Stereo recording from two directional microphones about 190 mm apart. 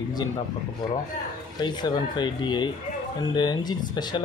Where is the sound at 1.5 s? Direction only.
25° left (ahead or behind).